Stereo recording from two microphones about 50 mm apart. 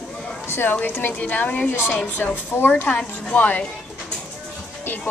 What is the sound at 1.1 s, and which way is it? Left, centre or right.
A woman's voice, left.